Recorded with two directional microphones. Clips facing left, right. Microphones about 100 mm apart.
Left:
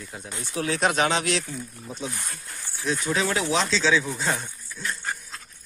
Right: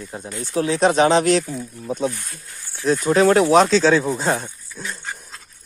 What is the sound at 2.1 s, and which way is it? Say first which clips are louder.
Speech: left 1 dB; 50° left (ahead or behind).